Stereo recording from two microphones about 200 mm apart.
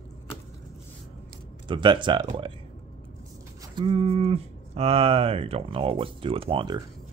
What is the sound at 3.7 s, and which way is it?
Speech, 25° right (ahead or behind).